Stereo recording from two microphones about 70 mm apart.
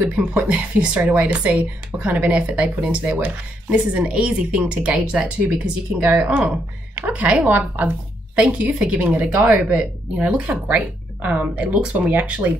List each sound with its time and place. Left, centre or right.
0.1 s speech: centre